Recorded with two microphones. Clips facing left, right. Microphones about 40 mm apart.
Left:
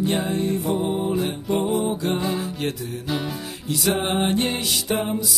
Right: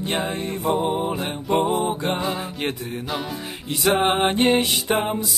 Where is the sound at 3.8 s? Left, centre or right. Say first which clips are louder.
Right 4 dB; right.